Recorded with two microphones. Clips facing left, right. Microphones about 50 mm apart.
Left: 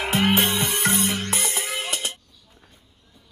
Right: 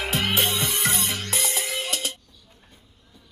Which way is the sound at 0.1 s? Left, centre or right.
Left.